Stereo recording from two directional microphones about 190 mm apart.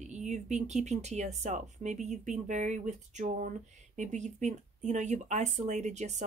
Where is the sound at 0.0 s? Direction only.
40° right (ahead or behind).